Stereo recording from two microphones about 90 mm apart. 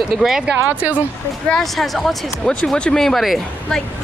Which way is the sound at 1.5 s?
Centre (ahead or behind).